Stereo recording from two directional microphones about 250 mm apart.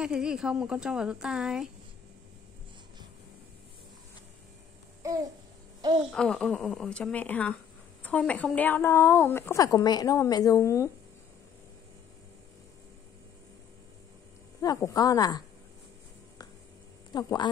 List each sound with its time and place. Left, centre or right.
0.0 s speech: centre
5.0 s babbling: centre
6.1 s a woman's voice: centre
14.6 s a woman's voice: centre
17.1 s a woman's voice: centre